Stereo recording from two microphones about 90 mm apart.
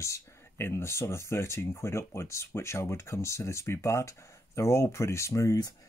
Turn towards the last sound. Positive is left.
turn(degrees=40)  # may be behind; listen again after turning